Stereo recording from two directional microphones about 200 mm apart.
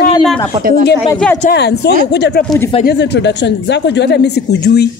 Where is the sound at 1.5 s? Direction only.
55° left (ahead or behind).